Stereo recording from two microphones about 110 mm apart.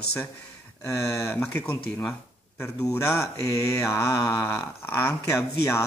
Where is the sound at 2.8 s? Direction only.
25° left (ahead or behind).